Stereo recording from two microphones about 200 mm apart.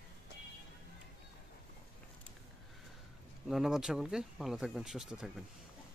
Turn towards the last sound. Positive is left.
turn(degrees=0)  # may be behind; listen again after turning